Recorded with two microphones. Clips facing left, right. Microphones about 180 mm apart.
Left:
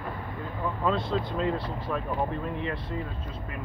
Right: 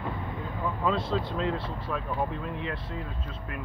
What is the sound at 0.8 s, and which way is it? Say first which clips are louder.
Speech: left 1 dB; centre (ahead or behind).